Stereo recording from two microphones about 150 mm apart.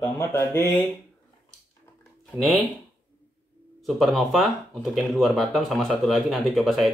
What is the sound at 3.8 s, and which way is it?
Speech, centre (ahead or behind).